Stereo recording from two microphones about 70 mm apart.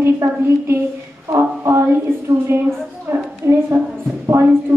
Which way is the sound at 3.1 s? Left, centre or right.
Right.